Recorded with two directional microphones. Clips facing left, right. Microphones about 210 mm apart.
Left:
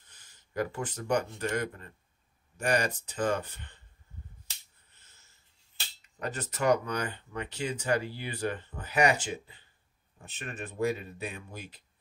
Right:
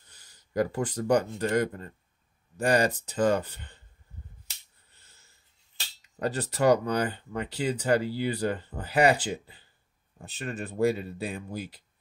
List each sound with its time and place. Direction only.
0.1 s speech: 35° right (ahead or behind)
6.1 s speech: 35° right (ahead or behind)